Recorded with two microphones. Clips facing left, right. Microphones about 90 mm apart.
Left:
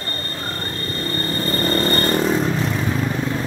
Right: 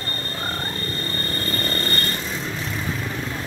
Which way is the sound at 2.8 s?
25° left (ahead or behind).